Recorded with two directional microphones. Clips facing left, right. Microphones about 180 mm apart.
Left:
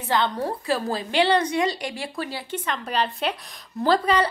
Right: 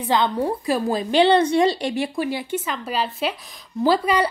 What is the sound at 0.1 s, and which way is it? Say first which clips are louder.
A woman's voice: right 3 dB; 15° right (ahead or behind).